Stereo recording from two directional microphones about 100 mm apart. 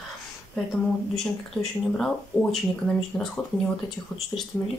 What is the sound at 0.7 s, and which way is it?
Speech, 5° left (ahead or behind).